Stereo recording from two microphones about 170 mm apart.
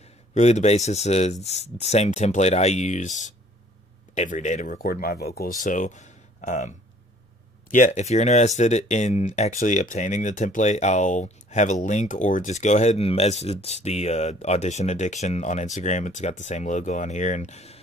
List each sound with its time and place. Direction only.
0.3 s speech: 45° left (ahead or behind)
7.7 s speech: 45° left (ahead or behind)